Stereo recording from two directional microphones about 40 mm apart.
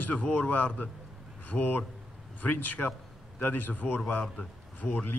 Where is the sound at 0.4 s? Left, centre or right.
Left.